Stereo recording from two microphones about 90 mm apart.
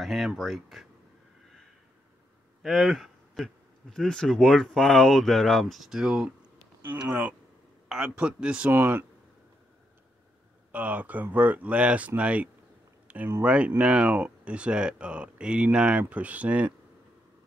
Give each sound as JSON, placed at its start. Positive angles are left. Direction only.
{"t": 0.0, "sound": "speech", "side_deg": 0}
{"t": 2.6, "sound": "speech", "side_deg": 0}
{"t": 6.9, "sound": "speech", "side_deg": -20}
{"t": 8.7, "sound": "speech", "side_deg": -20}
{"t": 10.7, "sound": "speech", "side_deg": -15}